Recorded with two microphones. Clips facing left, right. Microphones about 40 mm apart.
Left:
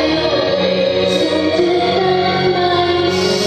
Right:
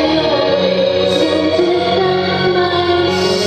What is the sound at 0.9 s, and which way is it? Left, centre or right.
Music, centre.